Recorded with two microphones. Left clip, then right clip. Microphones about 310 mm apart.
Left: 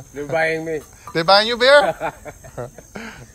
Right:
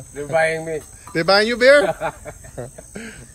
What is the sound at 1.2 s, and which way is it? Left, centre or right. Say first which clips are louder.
Speech: even; centre.